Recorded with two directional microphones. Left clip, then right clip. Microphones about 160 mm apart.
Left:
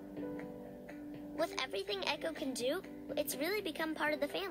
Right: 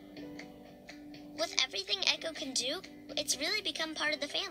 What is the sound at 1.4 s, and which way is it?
A woman's voice, 45° left (ahead or behind).